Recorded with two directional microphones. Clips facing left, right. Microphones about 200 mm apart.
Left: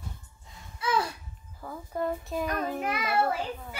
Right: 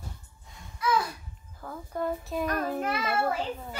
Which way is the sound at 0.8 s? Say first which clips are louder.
Right 1 dB; 30° left (ahead or behind).